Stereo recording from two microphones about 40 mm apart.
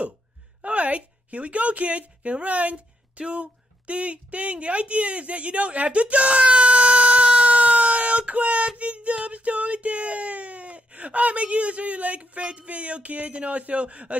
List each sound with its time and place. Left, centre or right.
0.6 s speech: right
8.3 s child singing: right
8.7 s a sound: right